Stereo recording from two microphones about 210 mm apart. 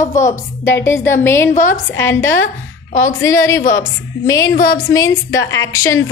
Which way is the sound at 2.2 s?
70° left (ahead or behind).